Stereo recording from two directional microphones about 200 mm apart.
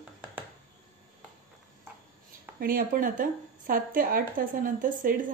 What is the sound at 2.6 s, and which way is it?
A woman's voice, 45° right (ahead or behind).